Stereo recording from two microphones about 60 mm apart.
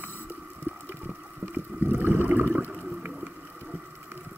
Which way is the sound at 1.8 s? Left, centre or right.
Right.